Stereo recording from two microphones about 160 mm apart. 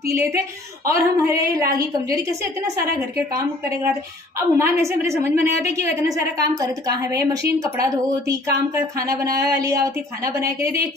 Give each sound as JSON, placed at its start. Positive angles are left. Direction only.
{"t": 0.0, "sound": "a woman's voice", "side_deg": -20}